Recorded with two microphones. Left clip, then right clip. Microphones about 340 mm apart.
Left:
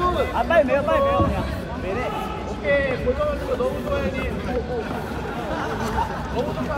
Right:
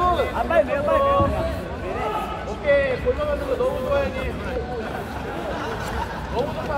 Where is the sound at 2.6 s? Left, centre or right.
Right.